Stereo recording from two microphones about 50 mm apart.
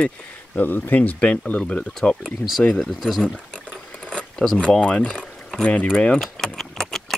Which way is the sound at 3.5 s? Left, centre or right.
Left.